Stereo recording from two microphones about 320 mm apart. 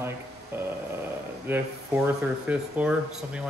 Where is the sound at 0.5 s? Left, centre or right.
Centre.